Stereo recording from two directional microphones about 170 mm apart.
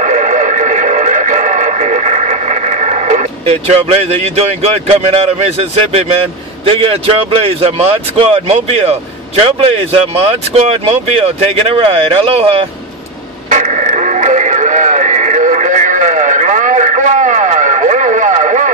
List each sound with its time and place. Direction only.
0.0 s radio: 45° right (ahead or behind)
6.6 s a man's voice: 30° right (ahead or behind)
13.5 s radio: 45° right (ahead or behind)